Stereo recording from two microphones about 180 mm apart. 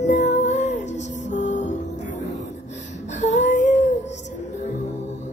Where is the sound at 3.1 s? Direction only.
40° left (ahead or behind).